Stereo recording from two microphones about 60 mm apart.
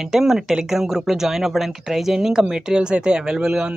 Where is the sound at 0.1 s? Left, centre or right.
Centre.